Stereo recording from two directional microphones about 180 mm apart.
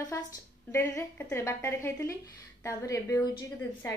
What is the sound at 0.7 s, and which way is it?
A woman's voice, 15° left (ahead or behind).